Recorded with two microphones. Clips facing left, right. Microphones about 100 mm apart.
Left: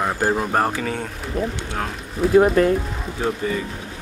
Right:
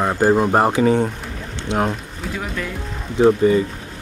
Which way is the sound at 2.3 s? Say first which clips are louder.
Left 14 dB; 40° left (ahead or behind).